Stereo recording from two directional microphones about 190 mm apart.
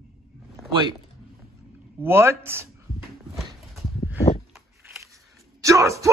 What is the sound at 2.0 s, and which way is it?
Speech, 15° right (ahead or behind).